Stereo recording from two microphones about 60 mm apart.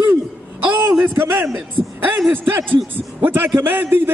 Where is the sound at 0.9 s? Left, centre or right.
Right.